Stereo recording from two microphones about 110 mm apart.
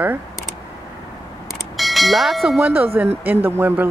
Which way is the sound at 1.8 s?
Centre (ahead or behind).